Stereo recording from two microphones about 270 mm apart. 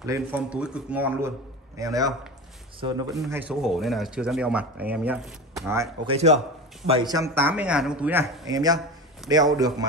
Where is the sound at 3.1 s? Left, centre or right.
Centre.